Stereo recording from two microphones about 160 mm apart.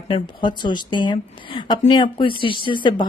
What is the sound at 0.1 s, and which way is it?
Speech, 30° left (ahead or behind).